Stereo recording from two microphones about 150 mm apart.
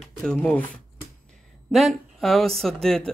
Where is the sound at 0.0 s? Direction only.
Centre (ahead or behind).